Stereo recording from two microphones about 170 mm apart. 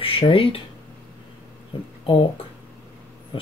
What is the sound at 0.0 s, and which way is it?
Speech, 30° left (ahead or behind).